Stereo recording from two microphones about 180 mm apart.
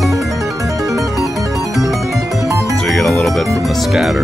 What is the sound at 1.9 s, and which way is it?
Music, centre (ahead or behind).